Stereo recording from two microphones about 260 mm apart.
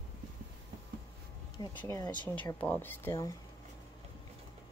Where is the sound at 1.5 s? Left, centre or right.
Centre.